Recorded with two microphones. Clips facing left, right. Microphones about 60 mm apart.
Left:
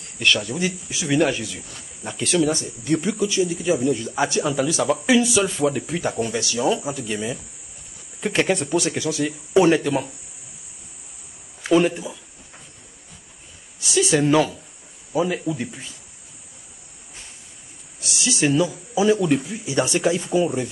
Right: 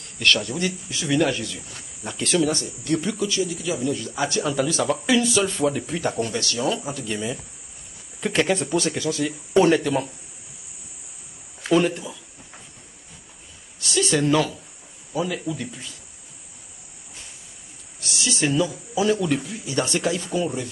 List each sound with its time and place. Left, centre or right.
0.2 s speech: centre
2.5 s speech: centre
3.4 s speech: left
3.8 s speech: centre
4.5 s speech: centre
11.6 s a sound: centre
13.7 s a sound: centre
15.1 s speech: centre
18.2 s speech: centre